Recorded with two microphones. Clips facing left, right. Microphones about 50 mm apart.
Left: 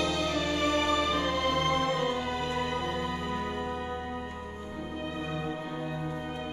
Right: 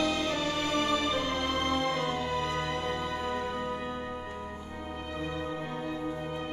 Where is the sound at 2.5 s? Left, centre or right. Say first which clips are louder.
Left 1 dB; centre.